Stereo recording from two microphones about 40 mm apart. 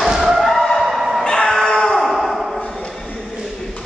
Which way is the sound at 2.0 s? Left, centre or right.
Centre.